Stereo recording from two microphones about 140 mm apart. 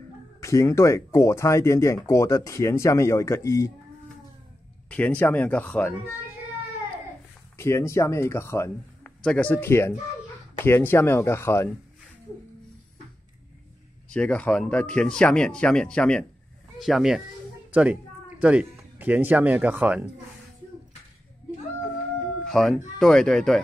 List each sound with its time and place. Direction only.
0.4 s speech: 20° left (ahead or behind)
4.8 s speech: 10° left (ahead or behind)
7.5 s speech: 20° left (ahead or behind)
9.2 s speech: 10° left (ahead or behind)
14.1 s speech: 10° left (ahead or behind)
18.4 s speech: 10° right (ahead or behind)
22.4 s speech: centre (ahead or behind)